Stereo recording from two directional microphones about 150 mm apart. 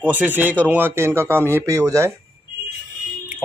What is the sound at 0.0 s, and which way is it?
Speech, 10° right (ahead or behind).